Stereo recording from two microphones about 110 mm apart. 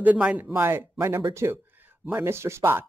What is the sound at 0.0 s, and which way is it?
Speech, 10° right (ahead or behind).